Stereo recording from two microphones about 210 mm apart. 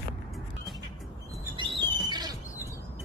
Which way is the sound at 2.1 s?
20° right (ahead or behind).